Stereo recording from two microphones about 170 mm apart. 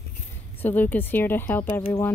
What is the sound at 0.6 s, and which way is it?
A woman's voice, 10° left (ahead or behind).